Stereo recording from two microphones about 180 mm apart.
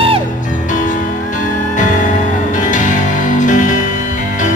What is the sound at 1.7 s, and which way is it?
Music, 45° left (ahead or behind).